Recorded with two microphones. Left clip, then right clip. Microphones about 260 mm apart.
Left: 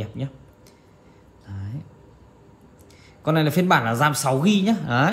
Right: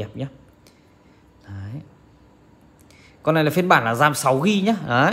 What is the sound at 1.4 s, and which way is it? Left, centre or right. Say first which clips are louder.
Speech: right 1 dB; right.